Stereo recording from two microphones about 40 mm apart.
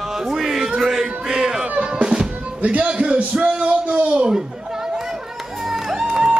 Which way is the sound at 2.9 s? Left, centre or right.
Right.